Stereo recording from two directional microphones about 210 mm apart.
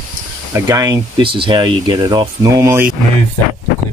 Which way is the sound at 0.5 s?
15° right (ahead or behind).